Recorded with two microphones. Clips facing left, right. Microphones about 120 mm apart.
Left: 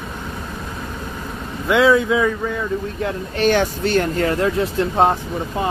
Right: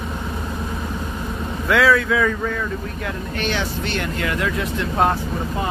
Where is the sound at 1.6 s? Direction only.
20° left (ahead or behind).